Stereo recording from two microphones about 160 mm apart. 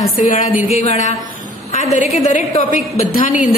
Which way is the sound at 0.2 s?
50° left (ahead or behind).